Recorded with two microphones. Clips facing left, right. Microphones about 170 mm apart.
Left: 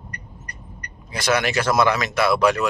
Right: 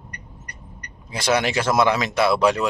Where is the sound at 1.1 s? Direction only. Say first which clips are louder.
Even; 25° right (ahead or behind).